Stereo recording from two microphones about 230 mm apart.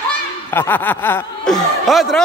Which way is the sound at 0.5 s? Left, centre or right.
Centre.